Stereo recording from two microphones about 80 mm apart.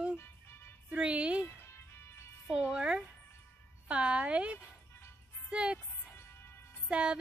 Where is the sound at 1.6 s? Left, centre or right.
Left.